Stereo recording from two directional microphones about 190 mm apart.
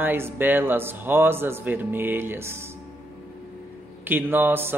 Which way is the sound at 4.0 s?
10° right (ahead or behind).